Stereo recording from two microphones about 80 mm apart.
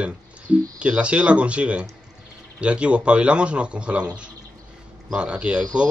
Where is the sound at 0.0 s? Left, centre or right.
Centre.